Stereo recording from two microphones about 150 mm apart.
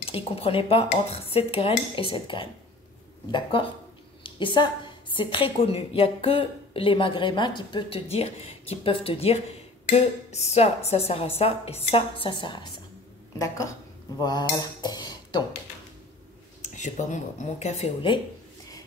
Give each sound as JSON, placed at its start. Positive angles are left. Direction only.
{"t": 0.0, "sound": "a woman's voice", "side_deg": 40}
{"t": 13.4, "sound": "a woman's voice", "side_deg": 20}
{"t": 14.2, "sound": "cutlery", "side_deg": 25}
{"t": 16.7, "sound": "speech", "side_deg": 55}